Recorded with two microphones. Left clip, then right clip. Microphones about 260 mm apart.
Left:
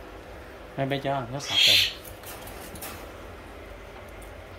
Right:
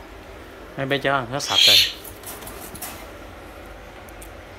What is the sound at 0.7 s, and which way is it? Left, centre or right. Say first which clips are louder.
Speech: right 6 dB; centre.